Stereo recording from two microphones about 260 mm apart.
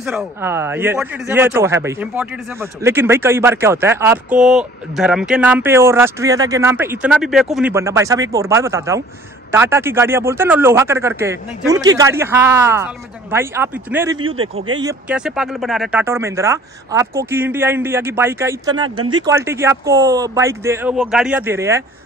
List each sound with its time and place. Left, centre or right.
0.0 s speech: centre